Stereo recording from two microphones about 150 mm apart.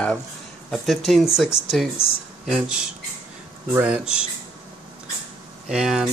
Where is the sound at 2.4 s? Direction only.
Centre (ahead or behind).